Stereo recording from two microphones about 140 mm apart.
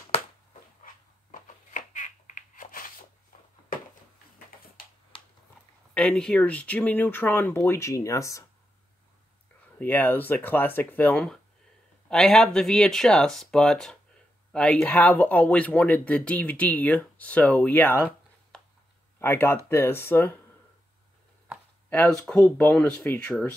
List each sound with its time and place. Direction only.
1.3 s a sound: 65° left (ahead or behind)
5.9 s speech: 5° left (ahead or behind); by 8.5 s 25° left (ahead or behind)
9.8 s speech: 10° left (ahead or behind)
19.1 s speech: 15° left (ahead or behind)
21.8 s speech: 10° left (ahead or behind)